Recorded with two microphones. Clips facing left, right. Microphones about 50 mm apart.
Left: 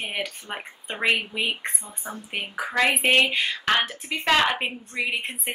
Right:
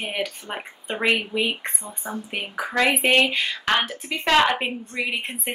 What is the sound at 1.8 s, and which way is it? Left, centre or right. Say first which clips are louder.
Speech: right 4 dB; right.